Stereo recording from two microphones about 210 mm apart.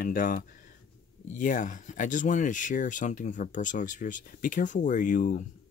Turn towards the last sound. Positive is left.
turn(degrees=40)  # may be behind; listen again after turning